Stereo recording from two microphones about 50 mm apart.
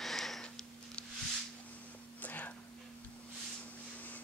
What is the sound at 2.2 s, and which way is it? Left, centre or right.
Whispering, left.